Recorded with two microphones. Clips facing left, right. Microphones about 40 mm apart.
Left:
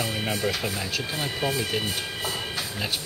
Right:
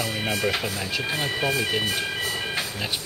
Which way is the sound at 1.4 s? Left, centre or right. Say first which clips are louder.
Right 1 dB; centre.